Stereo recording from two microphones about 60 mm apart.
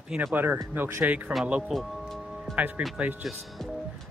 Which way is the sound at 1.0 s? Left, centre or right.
Right.